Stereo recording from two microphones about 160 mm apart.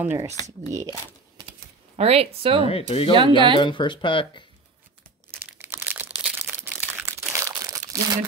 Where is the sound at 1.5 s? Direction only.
40° right (ahead or behind).